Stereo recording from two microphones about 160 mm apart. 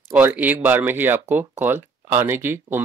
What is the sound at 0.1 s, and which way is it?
Speech, 10° right (ahead or behind).